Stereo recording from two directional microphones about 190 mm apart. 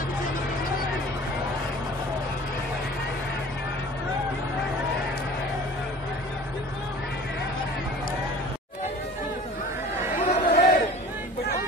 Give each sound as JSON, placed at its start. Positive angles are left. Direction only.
{"t": 10.1, "sound": "chatter", "side_deg": 40}